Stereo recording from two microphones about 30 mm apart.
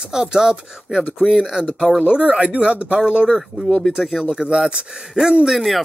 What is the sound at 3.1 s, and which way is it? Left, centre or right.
Speech, right.